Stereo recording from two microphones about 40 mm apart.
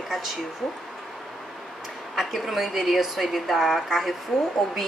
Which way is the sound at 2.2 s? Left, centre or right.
Centre.